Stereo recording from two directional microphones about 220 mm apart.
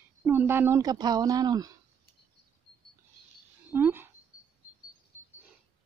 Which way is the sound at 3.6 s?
10° right (ahead or behind).